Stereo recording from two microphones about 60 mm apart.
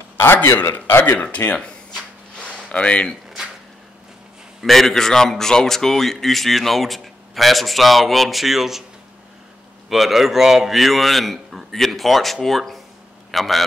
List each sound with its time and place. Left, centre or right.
0.2 s a man's voice: left
1.3 s a sound: centre
4.6 s speech: centre
9.8 s speech: centre